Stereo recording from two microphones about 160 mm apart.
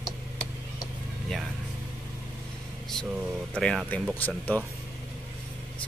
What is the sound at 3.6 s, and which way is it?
Speech, 5° left (ahead or behind).